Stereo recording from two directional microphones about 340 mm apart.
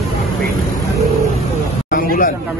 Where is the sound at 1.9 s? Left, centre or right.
Left.